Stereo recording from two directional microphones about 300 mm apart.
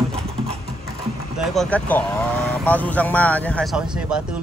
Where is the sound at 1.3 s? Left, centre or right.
Centre.